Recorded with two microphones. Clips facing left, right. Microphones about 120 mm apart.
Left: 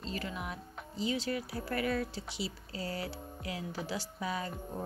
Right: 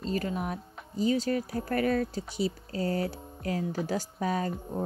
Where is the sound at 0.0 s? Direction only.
40° right (ahead or behind).